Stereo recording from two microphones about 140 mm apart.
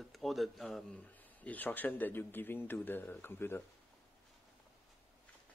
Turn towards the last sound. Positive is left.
turn(degrees=15)  # may be behind; listen again after turning